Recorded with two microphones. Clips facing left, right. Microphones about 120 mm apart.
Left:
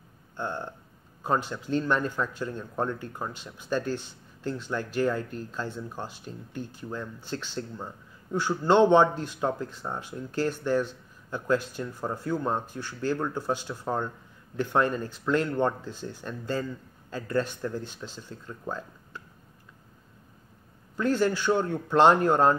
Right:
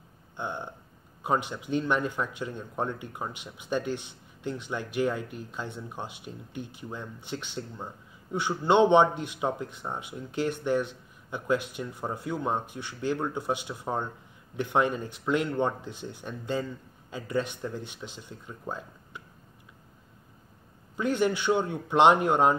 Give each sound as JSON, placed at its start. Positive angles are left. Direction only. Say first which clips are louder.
{"t": 0.4, "sound": "speech", "louder": "left 2 dB", "side_deg": -15}
{"t": 20.9, "sound": "speech", "louder": "left 1 dB", "side_deg": -15}